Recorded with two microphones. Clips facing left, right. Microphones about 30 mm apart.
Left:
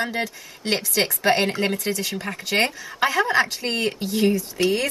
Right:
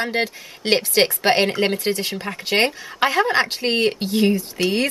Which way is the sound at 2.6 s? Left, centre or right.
Right.